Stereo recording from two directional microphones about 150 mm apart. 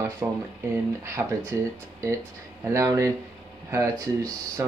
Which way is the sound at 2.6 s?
20° right (ahead or behind).